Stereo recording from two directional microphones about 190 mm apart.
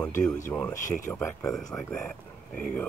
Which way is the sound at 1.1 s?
15° left (ahead or behind).